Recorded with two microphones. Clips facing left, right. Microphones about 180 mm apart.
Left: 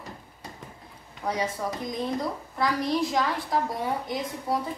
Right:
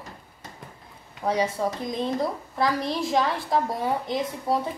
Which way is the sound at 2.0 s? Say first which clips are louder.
Right 3 dB; 25° right (ahead or behind).